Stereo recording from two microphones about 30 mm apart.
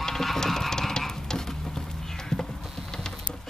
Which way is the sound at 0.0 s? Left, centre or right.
Centre.